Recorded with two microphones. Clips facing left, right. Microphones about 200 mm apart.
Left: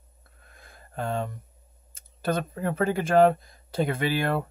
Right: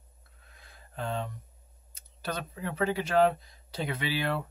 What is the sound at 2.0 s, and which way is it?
Speech, 50° left (ahead or behind).